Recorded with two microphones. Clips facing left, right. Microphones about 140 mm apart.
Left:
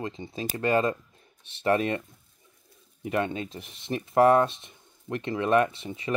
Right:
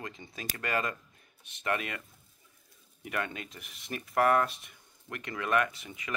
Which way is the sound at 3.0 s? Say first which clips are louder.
Left 8 dB; 30° left (ahead or behind).